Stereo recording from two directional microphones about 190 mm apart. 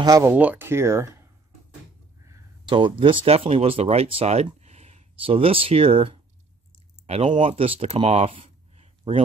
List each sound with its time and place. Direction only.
0.0 s speech: 15° right (ahead or behind)